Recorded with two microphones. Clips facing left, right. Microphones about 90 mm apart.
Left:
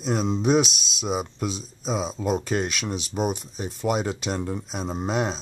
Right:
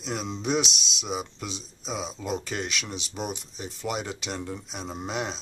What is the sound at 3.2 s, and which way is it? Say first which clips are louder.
Speech: left 8 dB; 40° left (ahead or behind).